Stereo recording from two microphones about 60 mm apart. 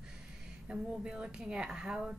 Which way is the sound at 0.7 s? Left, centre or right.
Centre.